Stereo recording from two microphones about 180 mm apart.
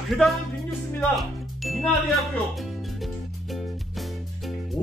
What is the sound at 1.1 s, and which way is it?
Speech, centre (ahead or behind).